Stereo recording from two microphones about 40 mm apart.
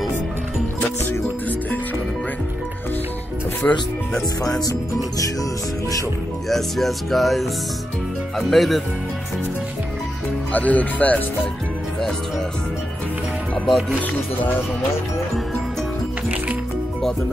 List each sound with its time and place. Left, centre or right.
3.6 s speech: left
6.5 s speech: centre
10.5 s speech: left
13.7 s speech: centre